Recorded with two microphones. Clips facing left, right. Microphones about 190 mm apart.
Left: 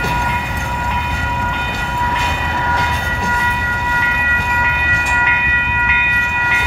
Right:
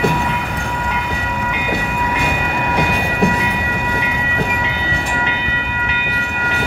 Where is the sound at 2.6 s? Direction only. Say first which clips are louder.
Right 4 dB; 15° right (ahead or behind).